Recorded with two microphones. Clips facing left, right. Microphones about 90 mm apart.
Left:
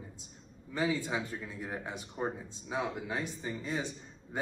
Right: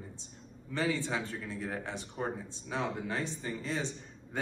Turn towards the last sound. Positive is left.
turn(degrees=20)  # may be behind; listen again after turning